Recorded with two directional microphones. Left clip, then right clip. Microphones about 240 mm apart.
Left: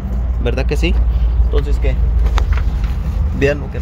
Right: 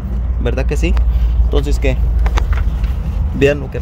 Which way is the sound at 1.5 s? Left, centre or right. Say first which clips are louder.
Right 4 dB; right.